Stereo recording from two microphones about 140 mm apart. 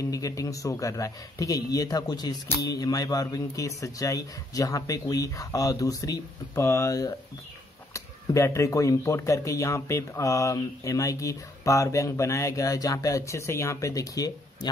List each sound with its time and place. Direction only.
0.1 s speech: 25° left (ahead or behind)